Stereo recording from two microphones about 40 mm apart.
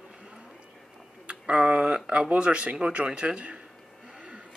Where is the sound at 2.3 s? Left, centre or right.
Right.